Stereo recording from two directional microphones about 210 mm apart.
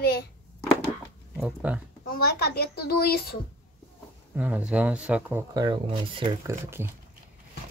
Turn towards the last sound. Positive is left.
turn(degrees=-10)  # may be behind; listen again after turning